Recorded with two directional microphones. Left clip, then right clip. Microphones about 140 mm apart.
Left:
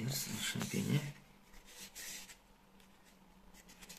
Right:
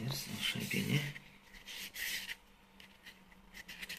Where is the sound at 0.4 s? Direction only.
25° left (ahead or behind).